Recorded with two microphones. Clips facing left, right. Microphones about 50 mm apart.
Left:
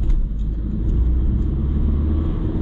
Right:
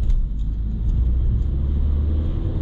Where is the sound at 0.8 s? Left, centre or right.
Left.